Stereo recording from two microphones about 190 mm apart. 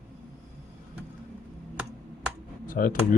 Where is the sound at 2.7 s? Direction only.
45° left (ahead or behind).